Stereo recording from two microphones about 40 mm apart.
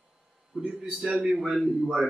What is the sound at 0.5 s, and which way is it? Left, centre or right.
Speech, right.